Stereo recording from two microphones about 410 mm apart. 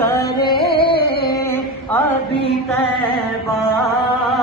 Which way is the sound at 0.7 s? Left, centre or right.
Centre.